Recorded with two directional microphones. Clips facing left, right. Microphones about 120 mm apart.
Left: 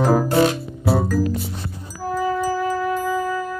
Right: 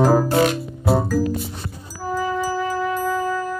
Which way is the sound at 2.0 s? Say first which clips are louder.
Left 1 dB; 5° right (ahead or behind).